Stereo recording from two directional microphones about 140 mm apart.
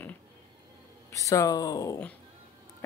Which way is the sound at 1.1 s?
25° left (ahead or behind).